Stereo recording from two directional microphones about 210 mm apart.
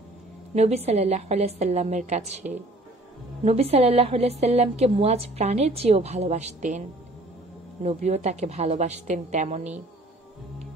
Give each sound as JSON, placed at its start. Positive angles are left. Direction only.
{"t": 0.6, "sound": "a woman's voice", "side_deg": -30}
{"t": 7.8, "sound": "a woman's voice", "side_deg": -30}